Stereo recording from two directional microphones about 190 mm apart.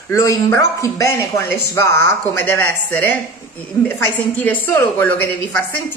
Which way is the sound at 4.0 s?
15° left (ahead or behind).